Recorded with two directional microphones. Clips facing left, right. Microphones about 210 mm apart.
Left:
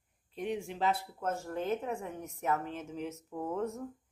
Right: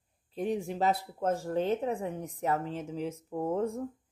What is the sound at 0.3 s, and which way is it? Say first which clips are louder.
Speech: right 4 dB; 35° right (ahead or behind).